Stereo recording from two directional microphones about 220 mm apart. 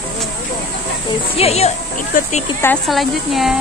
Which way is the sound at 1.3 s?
30° left (ahead or behind).